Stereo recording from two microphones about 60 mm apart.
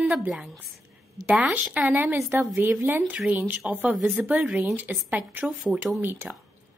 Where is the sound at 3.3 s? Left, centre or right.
Right.